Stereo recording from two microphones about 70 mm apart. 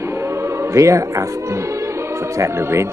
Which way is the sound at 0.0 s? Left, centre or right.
Right.